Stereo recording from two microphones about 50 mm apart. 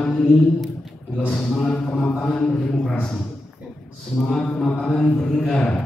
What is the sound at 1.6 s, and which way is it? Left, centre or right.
Speech, centre.